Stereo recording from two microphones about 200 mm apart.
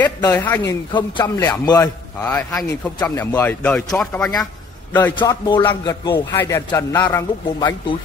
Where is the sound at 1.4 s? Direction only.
15° left (ahead or behind).